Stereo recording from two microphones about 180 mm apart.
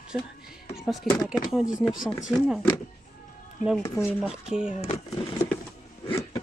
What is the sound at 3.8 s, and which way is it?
Speech, 15° left (ahead or behind).